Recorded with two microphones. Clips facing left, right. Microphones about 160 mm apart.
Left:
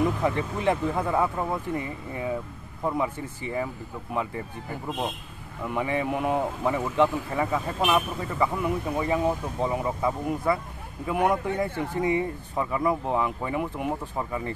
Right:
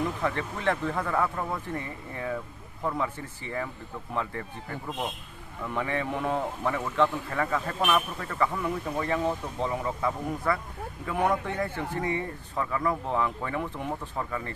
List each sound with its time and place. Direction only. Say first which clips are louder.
0.2 s speech: left 4 dB; 15° left (ahead or behind)
5.8 s speech: left 3 dB; 10° left (ahead or behind)